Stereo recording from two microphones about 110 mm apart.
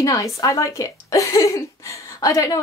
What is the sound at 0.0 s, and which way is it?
A woman's voice, 30° left (ahead or behind).